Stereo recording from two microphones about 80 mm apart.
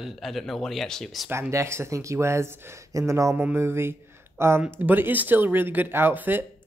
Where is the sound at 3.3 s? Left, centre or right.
Right.